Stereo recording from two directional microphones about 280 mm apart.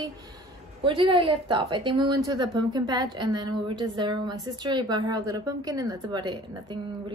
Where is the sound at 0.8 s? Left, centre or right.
Centre.